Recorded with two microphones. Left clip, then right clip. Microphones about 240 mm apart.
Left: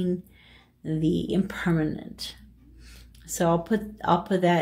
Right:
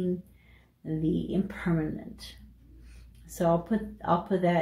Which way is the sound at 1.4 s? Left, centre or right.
Left.